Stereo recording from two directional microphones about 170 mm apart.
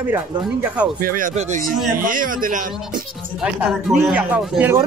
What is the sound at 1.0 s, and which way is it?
A man's voice, 55° right (ahead or behind).